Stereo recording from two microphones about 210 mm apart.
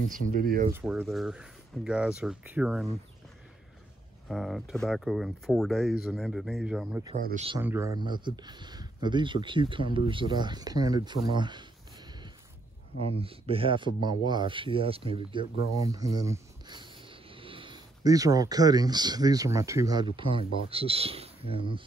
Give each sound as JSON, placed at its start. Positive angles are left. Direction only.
{"t": 0.1, "sound": "speech", "side_deg": -45}
{"t": 0.7, "sound": "speech", "side_deg": -5}
{"t": 4.3, "sound": "speech", "side_deg": 0}
{"t": 7.2, "sound": "speech", "side_deg": -40}
{"t": 7.6, "sound": "speech", "side_deg": -10}
{"t": 13.2, "sound": "speech", "side_deg": -25}